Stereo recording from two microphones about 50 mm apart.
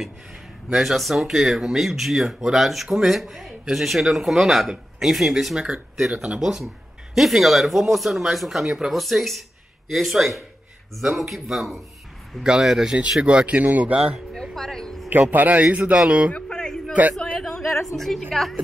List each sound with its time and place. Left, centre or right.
0.7 s speech: centre
6.1 s speech: centre
7.2 s speech: centre
13.2 s speech: right
14.3 s speech: centre
15.3 s speech: right
16.3 s a sound: centre
17.9 s speech: centre